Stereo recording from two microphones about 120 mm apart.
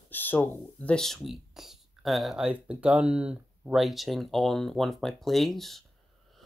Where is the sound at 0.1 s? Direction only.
15° left (ahead or behind).